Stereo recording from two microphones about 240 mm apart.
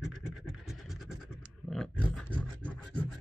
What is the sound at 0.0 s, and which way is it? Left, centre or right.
Scratch, centre.